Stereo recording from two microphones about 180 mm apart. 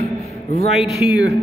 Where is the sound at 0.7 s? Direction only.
Centre (ahead or behind).